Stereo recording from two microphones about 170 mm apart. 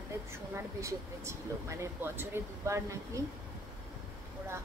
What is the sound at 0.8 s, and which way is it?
Speech, 15° right (ahead or behind).